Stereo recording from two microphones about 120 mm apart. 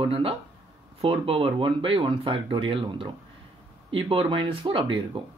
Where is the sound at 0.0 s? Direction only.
50° right (ahead or behind).